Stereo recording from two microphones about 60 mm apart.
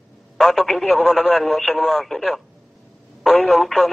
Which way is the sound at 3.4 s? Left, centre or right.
Centre.